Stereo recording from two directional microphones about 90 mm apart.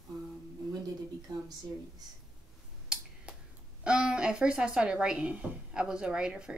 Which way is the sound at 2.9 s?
10° right (ahead or behind).